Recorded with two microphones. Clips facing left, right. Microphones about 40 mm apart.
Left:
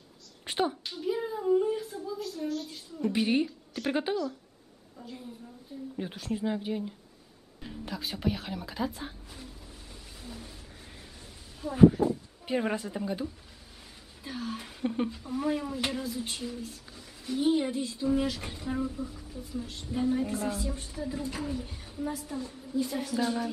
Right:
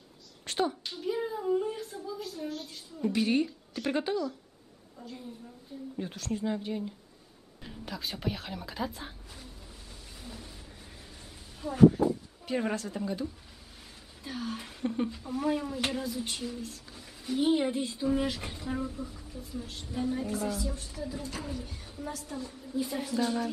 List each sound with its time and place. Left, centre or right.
0.5 s a sound: centre
0.8 s a sound: centre
3.1 s speech: centre
3.4 s a woman's voice: centre
5.9 s speech: centre
10.2 s a sound: centre
11.6 s speech: centre
17.5 s a child's voice: centre
20.2 s a woman's voice: left; by 23.5 s centre